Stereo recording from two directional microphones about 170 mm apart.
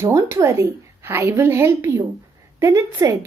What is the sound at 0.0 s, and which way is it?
A woman's voice, 15° right (ahead or behind).